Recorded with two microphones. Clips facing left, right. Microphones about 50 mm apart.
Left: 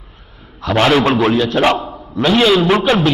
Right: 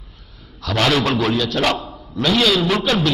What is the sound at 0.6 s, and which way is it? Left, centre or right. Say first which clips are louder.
A man's voice: left 5 dB; left.